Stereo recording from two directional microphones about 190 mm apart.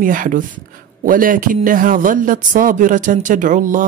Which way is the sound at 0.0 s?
45° right (ahead or behind).